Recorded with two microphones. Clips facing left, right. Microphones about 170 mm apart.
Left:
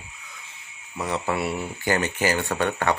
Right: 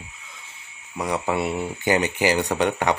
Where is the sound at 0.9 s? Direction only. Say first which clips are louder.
Right 2 dB; 10° right (ahead or behind).